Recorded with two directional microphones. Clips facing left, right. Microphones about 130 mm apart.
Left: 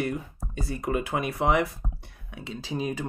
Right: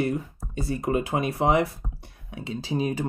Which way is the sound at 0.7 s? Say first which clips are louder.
Right 3 dB; 30° right (ahead or behind).